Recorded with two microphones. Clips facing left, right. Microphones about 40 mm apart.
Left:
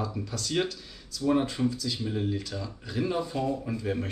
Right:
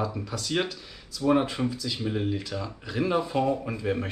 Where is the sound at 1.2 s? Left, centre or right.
Right.